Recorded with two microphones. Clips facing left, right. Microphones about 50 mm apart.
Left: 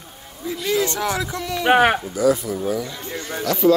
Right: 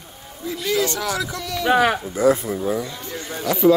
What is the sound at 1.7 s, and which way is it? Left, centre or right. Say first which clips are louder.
Speech: left 2 dB; left.